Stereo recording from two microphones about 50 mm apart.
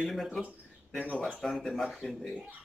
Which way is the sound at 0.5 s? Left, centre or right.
Left.